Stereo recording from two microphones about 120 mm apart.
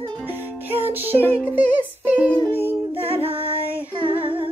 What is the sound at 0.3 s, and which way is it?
Music, 15° right (ahead or behind).